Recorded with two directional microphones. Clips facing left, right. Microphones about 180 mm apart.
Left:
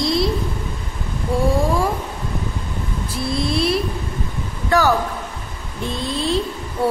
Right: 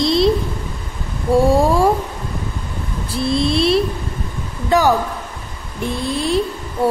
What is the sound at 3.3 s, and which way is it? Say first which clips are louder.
Speech: right 4 dB; 25° right (ahead or behind).